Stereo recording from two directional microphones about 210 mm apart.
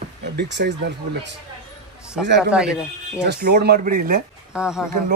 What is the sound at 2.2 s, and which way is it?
Speech, centre (ahead or behind).